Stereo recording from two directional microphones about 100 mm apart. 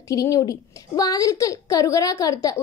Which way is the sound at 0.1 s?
35° left (ahead or behind).